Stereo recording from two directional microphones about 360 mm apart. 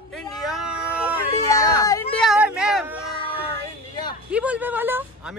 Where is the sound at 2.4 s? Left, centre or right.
Centre.